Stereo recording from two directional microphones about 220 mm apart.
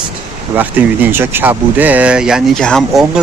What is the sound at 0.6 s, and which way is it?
Speech, 10° right (ahead or behind).